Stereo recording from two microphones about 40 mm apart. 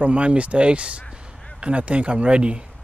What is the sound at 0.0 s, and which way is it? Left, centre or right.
A man's voice, right.